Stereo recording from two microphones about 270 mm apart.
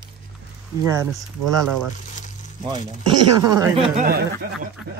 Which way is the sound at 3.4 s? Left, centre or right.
Centre.